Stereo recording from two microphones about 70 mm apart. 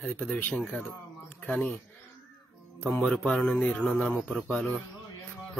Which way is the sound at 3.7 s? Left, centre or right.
Centre.